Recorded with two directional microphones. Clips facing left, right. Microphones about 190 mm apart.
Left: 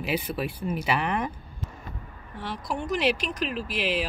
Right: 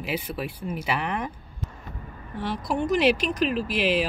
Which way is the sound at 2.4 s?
5° right (ahead or behind).